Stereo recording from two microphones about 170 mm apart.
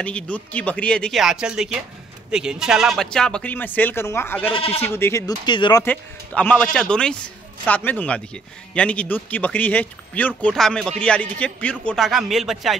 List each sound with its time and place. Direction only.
0.0 s speech: 5° left (ahead or behind)
4.6 s speech: 35° left (ahead or behind)
4.8 s speech: 15° left (ahead or behind)
5.9 s speech: 10° left (ahead or behind)